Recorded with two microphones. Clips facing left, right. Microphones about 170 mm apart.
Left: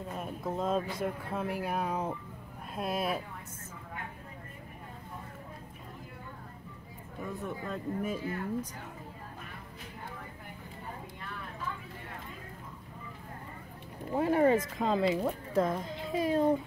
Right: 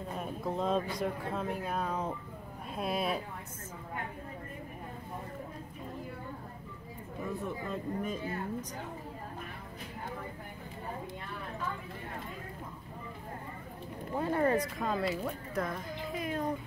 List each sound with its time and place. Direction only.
0.2 s speech: centre (ahead or behind)
7.3 s speech: centre (ahead or behind)
14.1 s speech: 15° left (ahead or behind)